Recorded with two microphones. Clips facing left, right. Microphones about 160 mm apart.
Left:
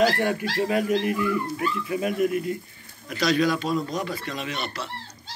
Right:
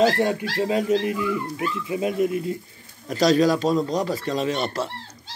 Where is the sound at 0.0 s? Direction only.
25° right (ahead or behind).